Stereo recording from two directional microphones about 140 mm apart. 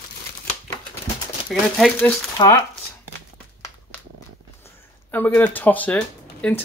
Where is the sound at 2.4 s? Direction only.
25° left (ahead or behind).